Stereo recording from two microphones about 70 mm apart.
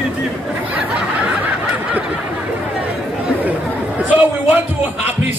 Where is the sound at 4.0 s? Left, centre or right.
Right.